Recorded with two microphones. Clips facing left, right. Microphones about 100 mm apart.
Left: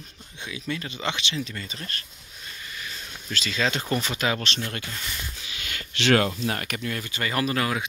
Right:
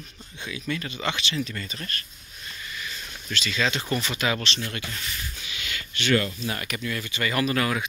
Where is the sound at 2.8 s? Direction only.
35° left (ahead or behind).